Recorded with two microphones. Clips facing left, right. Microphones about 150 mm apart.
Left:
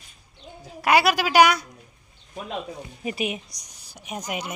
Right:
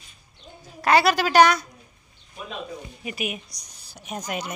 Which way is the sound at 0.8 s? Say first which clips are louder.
Right 1 dB; 10° left (ahead or behind).